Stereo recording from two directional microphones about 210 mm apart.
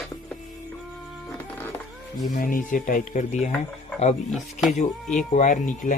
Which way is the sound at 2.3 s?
40° left (ahead or behind).